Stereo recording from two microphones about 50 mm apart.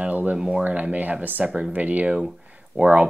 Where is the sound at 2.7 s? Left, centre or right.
Centre.